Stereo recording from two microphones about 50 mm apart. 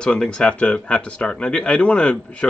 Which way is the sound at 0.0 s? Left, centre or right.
Centre.